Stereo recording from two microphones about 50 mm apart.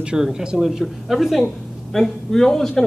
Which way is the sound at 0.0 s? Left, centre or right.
Centre.